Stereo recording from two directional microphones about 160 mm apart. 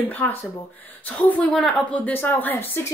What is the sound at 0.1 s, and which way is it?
Speech, 10° left (ahead or behind).